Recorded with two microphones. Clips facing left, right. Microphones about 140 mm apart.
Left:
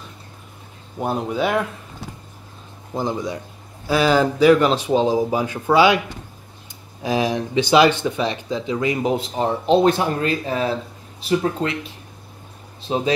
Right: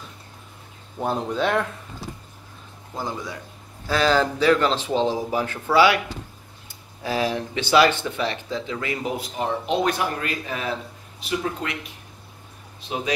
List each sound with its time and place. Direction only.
0.9 s speech: 10° left (ahead or behind)
2.9 s speech: 20° left (ahead or behind)
7.0 s speech: 15° left (ahead or behind); by 11.7 s 35° left (ahead or behind)
12.8 s speech: 30° left (ahead or behind)